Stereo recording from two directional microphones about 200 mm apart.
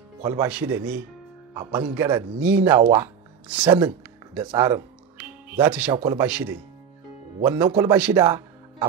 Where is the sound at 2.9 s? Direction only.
10° right (ahead or behind).